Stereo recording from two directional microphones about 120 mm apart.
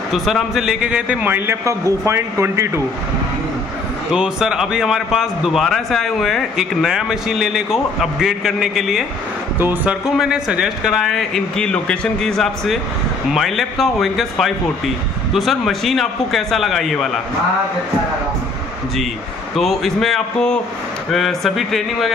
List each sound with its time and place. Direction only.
0.1 s a man's voice: 5° right (ahead or behind); by 2.8 s 20° right (ahead or behind)
4.1 s a man's voice: 5° right (ahead or behind)
9.6 s a man's voice: 15° right (ahead or behind)
10.0 s a man's voice: 5° right (ahead or behind)
19.5 s a man's voice: centre (ahead or behind)